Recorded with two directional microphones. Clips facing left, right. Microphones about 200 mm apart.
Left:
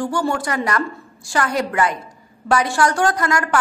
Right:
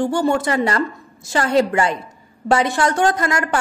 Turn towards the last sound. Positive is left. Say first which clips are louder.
# even
turn(degrees=-25)  # may be behind; listen again after turning